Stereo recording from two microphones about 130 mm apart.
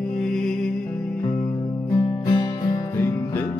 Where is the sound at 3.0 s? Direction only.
15° left (ahead or behind).